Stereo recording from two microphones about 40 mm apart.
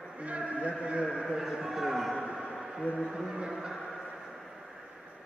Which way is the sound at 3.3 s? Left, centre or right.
Centre.